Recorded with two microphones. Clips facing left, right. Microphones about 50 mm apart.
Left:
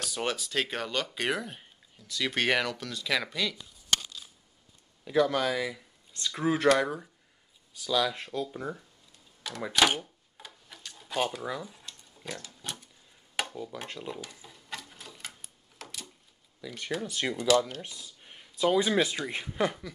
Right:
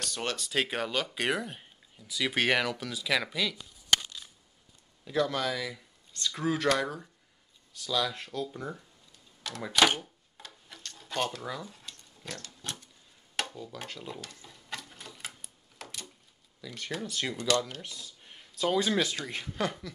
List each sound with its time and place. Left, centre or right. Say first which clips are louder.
0.0 s a sound: left 2 dB; centre
0.4 s speech: right 1 dB; centre
5.0 s speech: left 3 dB; centre
9.8 s a sound: even; centre
11.9 s pig: left 2 dB; centre
13.4 s speech: left 1 dB; centre
13.9 s typewriter: left 3 dB; centre
16.6 s speech: left 3 dB; centre